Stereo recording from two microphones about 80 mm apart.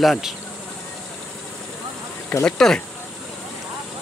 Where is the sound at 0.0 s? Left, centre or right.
Centre.